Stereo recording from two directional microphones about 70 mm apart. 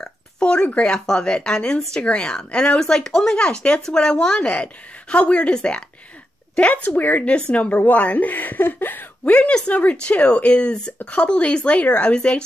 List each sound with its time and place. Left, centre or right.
0.0 s a woman's voice: centre